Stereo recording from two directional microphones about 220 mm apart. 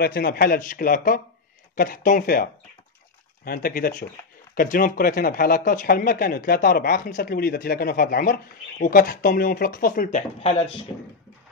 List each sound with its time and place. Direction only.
0.0 s speech: 45° left (ahead or behind)